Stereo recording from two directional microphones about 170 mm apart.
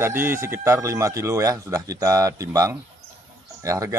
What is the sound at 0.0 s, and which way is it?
Speech, 15° right (ahead or behind).